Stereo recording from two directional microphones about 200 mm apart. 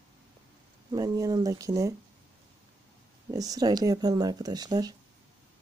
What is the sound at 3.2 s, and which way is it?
Speech, 20° right (ahead or behind).